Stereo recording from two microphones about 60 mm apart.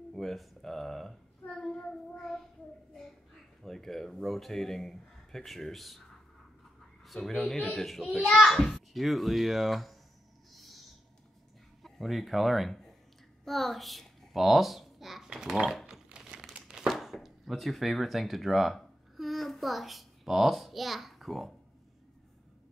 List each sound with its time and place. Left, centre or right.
0.1 s a child's voice: centre
1.7 s child singing: centre
3.6 s a man's voice: centre
7.1 s a child's voice: centre
10.5 s owl: centre
11.8 s speech: centre
13.5 s a sound: centre
15.2 s speech: centre
16.1 s crumpling: centre
16.5 s a sound: centre